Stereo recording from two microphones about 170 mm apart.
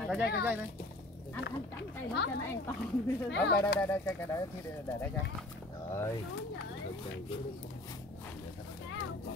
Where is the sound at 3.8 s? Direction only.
15° left (ahead or behind).